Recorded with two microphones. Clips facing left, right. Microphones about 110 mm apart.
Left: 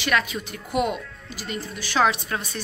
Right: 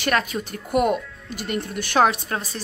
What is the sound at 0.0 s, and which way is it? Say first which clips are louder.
A woman's voice: right 2 dB; 45° right (ahead or behind).